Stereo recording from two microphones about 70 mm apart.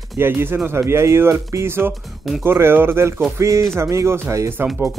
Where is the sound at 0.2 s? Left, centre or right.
Right.